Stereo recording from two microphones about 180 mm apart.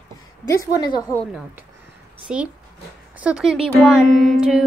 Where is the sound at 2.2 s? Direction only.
5° right (ahead or behind).